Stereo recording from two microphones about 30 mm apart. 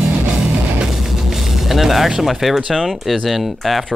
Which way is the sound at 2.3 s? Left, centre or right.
Centre.